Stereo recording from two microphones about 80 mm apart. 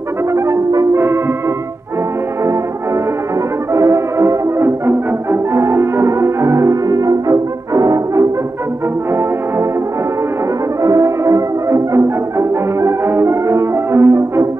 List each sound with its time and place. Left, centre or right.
0.3 s brass instrument: right
0.9 s music: right
3.7 s music: right
10.8 s music: right